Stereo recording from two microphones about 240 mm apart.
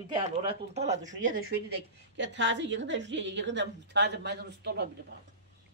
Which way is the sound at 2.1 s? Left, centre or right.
Right.